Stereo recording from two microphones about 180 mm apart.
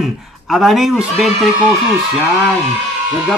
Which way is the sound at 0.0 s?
Centre (ahead or behind).